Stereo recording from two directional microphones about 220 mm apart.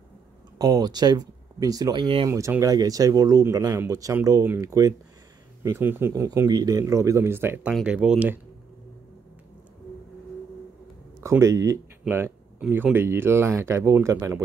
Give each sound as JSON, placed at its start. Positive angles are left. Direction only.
{"t": 0.6, "sound": "speech", "side_deg": -15}
{"t": 11.2, "sound": "speech", "side_deg": -15}